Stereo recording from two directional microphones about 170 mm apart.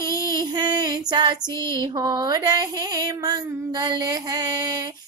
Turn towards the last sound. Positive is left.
turn(degrees=-20)  # may be behind; listen again after turning